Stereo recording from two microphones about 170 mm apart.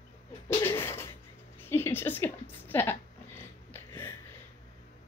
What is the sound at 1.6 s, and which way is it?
A woman's voice, 15° left (ahead or behind).